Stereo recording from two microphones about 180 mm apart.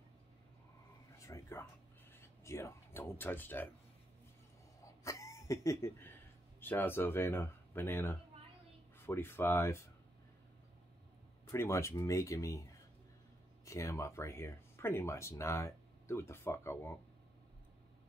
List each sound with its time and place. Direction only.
1.1 s speech: 15° left (ahead or behind)
4.8 s a sound: 15° left (ahead or behind)
6.6 s speech: 10° left (ahead or behind)
11.5 s speech: 15° left (ahead or behind)
13.7 s speech: 15° left (ahead or behind)